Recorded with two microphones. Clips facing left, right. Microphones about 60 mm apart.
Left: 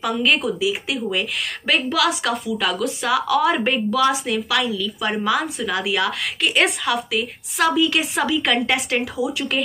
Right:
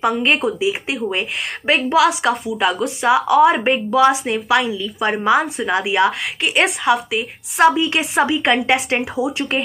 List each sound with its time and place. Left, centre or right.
0.5 s speech: right